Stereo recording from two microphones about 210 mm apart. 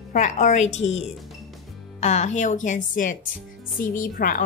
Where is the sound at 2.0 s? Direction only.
35° left (ahead or behind).